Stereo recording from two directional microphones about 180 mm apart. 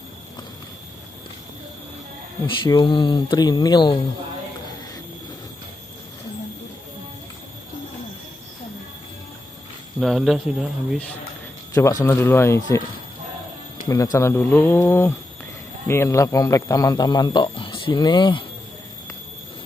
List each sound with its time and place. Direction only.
2.4 s a man's voice: 25° left (ahead or behind)
9.9 s speech: centre (ahead or behind)
11.7 s speech: 15° left (ahead or behind)
13.8 s a man's voice: 20° left (ahead or behind)